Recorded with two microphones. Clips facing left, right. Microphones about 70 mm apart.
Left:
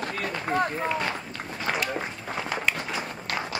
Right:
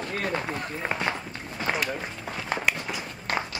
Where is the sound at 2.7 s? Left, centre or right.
Left.